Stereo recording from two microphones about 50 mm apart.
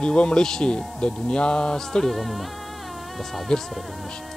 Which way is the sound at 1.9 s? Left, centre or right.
Centre.